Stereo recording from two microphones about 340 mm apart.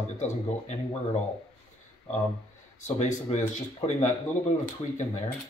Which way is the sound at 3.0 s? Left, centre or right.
Centre.